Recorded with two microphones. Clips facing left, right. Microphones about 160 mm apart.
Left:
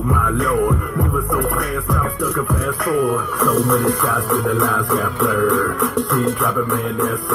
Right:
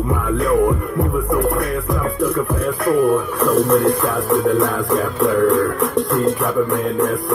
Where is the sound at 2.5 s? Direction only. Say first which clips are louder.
Right 2 dB; centre (ahead or behind).